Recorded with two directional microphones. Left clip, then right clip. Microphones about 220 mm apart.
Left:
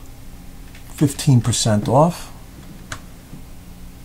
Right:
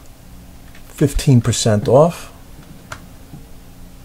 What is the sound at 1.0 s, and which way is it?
Speech, 35° right (ahead or behind).